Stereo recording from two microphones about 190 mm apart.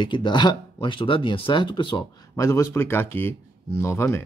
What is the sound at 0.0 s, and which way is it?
Speech, 25° left (ahead or behind).